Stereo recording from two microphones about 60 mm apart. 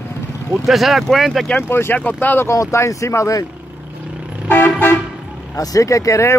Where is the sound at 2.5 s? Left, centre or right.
Left.